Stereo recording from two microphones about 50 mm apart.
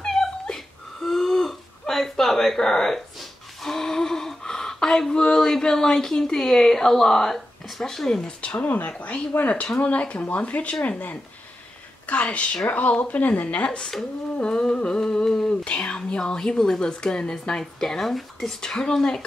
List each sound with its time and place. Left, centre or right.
0.0 s a sound: centre
8.4 s speech: left
13.7 s speech: centre